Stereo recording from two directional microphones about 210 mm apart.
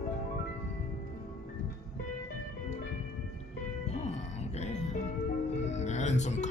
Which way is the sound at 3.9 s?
30° left (ahead or behind).